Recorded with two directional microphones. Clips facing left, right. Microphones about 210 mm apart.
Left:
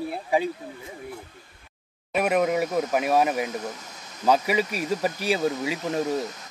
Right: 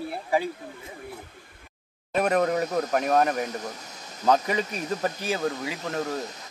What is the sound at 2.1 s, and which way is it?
Speech, 10° left (ahead or behind).